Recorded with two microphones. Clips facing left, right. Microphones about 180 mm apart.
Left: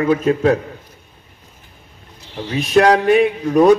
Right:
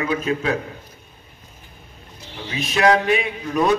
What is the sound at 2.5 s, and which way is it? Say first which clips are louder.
A man's voice: left 5 dB; 45° left (ahead or behind).